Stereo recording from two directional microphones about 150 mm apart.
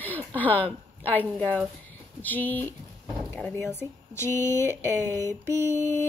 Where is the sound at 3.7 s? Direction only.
15° left (ahead or behind).